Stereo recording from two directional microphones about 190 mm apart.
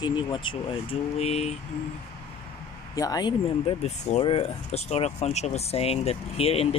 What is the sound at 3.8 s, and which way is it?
Speech, 30° left (ahead or behind).